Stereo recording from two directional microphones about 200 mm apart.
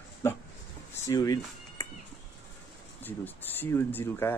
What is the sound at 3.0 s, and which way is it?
Speech, 10° left (ahead or behind).